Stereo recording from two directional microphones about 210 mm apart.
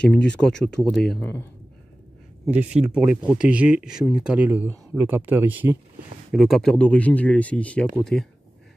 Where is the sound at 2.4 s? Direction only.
5° right (ahead or behind).